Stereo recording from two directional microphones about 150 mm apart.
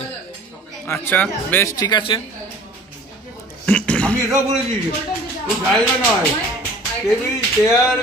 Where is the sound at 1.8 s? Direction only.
30° left (ahead or behind).